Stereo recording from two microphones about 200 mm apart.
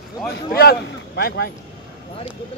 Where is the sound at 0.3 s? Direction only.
50° left (ahead or behind).